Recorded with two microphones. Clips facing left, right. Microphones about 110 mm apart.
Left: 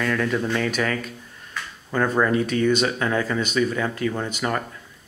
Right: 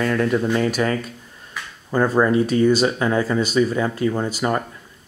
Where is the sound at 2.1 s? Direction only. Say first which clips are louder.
Right 4 dB; 20° right (ahead or behind).